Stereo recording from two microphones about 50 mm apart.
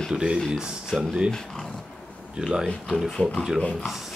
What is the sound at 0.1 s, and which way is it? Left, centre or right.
Speech, centre.